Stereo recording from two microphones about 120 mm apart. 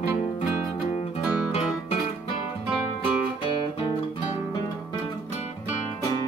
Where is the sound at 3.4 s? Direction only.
40° left (ahead or behind).